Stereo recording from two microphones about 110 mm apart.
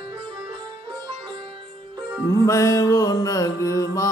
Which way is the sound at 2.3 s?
30° left (ahead or behind).